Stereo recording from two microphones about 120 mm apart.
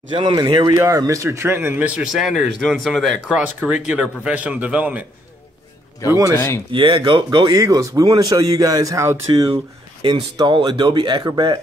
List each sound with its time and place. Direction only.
0.1 s speech: 40° right (ahead or behind); by 1.9 s 20° right (ahead or behind)
2.0 s speech: 5° right (ahead or behind)
3.3 s a man's voice: 10° right (ahead or behind)
6.0 s speech: 25° left (ahead or behind)
6.7 s speech: 45° right (ahead or behind); by 9.2 s 25° right (ahead or behind)
10.0 s speech: 40° right (ahead or behind)